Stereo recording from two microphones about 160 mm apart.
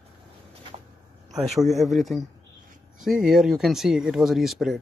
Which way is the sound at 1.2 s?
Centre (ahead or behind).